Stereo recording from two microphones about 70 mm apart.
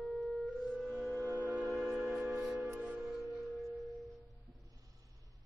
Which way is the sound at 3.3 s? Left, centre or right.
Centre.